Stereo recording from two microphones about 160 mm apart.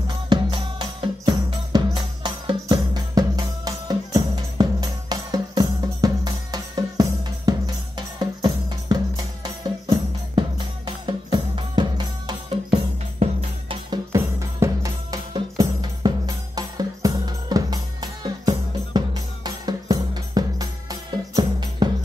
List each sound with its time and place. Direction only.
0.3 s music: 30° right (ahead or behind)
10.9 s music: 30° right (ahead or behind)
14.1 s music: 20° right (ahead or behind)